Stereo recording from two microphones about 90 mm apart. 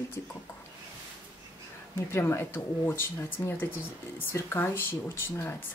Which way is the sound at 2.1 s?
30° left (ahead or behind).